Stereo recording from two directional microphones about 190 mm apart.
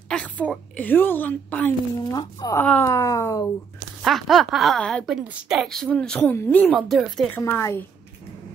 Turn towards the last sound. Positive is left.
turn(degrees=10)  # may be behind; listen again after turning